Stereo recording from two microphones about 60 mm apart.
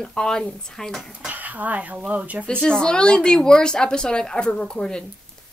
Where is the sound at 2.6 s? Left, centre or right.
Centre.